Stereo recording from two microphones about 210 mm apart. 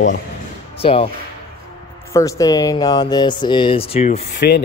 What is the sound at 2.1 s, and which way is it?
Speech, 15° left (ahead or behind).